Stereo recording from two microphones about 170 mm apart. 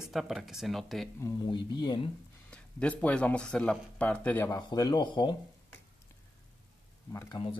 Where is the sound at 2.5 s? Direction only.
5° left (ahead or behind).